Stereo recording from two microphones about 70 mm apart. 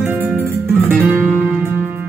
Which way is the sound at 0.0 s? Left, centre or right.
Right.